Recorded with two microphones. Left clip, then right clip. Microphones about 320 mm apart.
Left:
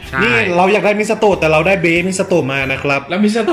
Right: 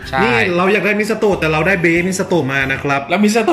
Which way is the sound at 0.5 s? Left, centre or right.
Centre.